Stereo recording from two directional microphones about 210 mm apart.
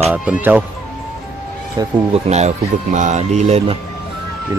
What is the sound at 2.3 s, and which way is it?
Speech, 35° right (ahead or behind).